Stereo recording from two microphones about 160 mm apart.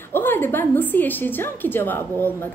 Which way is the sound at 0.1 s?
15° left (ahead or behind).